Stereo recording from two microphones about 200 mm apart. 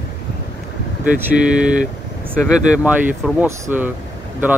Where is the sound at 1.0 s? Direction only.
5° right (ahead or behind).